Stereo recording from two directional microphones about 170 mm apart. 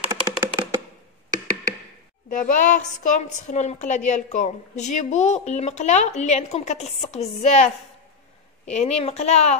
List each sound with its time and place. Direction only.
0.1 s music: 20° right (ahead or behind)
2.2 s a woman's voice: 50° left (ahead or behind)